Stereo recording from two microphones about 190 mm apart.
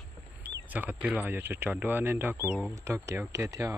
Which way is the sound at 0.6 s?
10° right (ahead or behind).